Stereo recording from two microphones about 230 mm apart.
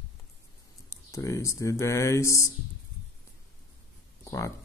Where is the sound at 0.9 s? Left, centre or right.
Centre.